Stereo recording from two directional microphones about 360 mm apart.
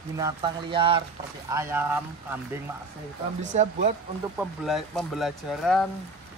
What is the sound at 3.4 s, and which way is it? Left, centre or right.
Speech, centre.